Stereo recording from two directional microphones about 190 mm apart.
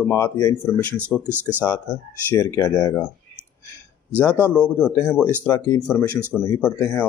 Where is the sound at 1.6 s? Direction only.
10° left (ahead or behind).